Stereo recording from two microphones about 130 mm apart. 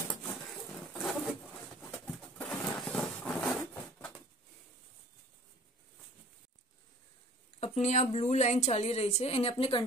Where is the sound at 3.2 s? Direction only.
5° left (ahead or behind).